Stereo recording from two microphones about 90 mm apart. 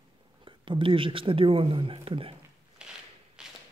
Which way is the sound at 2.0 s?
90° right.